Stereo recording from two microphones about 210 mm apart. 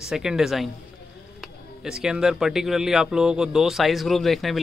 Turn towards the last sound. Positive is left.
turn(degrees=0)  # may be behind; listen again after turning